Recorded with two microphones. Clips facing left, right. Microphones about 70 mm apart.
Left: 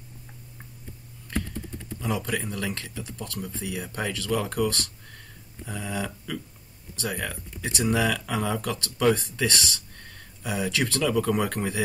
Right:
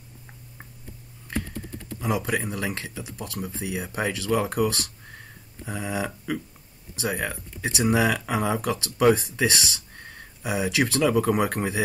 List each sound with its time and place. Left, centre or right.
2.0 s speech: centre
4.6 s speech: centre